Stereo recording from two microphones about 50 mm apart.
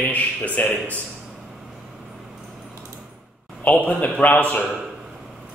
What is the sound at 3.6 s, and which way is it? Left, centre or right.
A man's voice, left.